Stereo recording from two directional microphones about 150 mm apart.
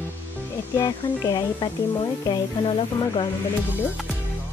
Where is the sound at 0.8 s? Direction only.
25° left (ahead or behind).